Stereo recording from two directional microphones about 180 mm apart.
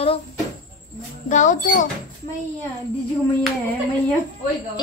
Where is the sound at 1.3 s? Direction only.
45° left (ahead or behind).